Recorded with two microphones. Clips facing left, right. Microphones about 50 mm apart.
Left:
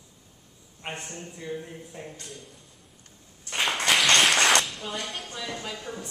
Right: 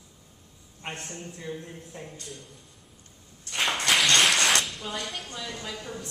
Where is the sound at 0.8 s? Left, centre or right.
Centre.